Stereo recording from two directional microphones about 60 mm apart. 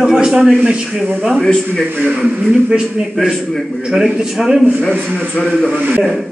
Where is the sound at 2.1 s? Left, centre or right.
Centre.